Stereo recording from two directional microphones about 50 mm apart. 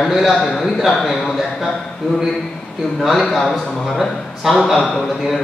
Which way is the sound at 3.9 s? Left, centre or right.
Centre.